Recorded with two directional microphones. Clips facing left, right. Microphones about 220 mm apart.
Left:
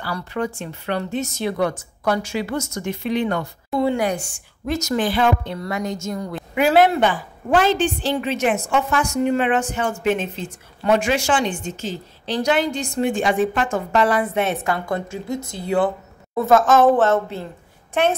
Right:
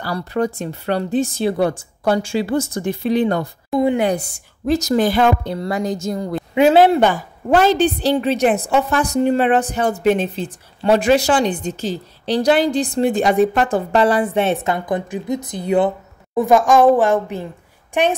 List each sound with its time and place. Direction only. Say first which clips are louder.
0.0 s a woman's voice: right 5 dB; 40° right (ahead or behind)
3.7 s a woman's voice: right 3 dB; 20° right (ahead or behind)
4.1 s a woman's voice: right 5 dB; 35° right (ahead or behind)
7.0 s a woman's voice: right 4 dB; 40° right (ahead or behind); by 18.1 s 15° right (ahead or behind)